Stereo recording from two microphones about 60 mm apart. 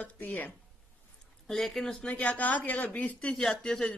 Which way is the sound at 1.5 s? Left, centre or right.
Centre.